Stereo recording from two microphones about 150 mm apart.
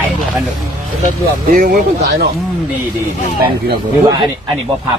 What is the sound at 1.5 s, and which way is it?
Speech, 80° right.